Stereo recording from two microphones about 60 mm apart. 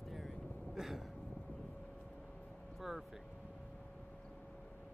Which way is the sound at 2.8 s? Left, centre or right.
Centre.